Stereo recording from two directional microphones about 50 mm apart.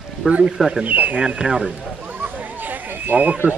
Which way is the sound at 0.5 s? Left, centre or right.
Centre.